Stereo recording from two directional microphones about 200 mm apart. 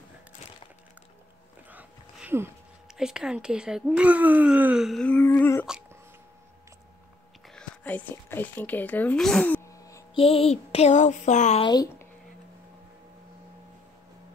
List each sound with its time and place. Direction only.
1.7 s speech: 10° right (ahead or behind); by 5.7 s 10° left (ahead or behind)
7.4 s speech: 5° left (ahead or behind)
10.1 s speech: 30° left (ahead or behind)
11.6 s speech: 20° left (ahead or behind)